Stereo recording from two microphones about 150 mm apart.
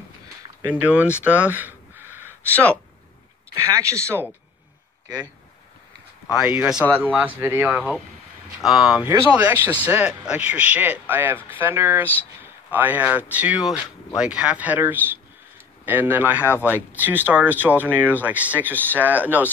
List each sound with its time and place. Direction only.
0.7 s speech: 10° right (ahead or behind)
3.6 s speech: 20° right (ahead or behind)
6.4 s speech: 10° right (ahead or behind)